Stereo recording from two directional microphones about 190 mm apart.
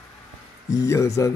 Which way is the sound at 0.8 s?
15° left (ahead or behind).